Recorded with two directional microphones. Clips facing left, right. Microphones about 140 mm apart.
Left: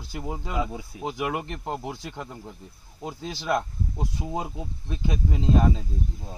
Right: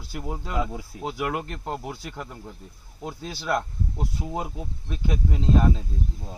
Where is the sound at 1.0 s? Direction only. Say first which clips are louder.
Even; 15° left (ahead or behind).